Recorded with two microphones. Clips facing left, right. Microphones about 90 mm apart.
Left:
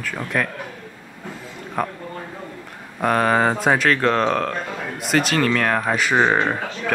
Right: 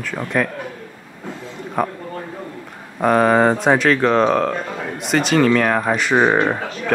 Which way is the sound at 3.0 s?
5° right (ahead or behind).